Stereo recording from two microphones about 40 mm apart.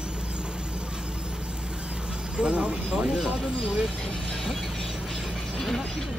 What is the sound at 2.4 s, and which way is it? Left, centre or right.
Speech, right.